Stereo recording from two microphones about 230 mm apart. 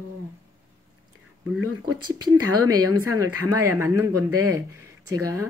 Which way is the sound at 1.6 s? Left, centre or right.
Right.